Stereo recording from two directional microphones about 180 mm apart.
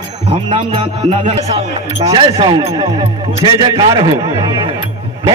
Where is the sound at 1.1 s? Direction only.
30° right (ahead or behind).